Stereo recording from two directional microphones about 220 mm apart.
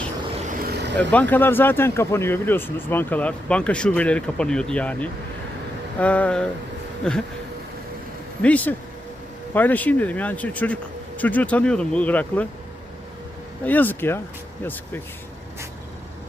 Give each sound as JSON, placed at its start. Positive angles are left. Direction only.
{"t": 0.6, "sound": "vehicle", "side_deg": -45}
{"t": 0.9, "sound": "speech", "side_deg": 5}
{"t": 8.4, "sound": "speech", "side_deg": 5}
{"t": 13.7, "sound": "speech", "side_deg": 10}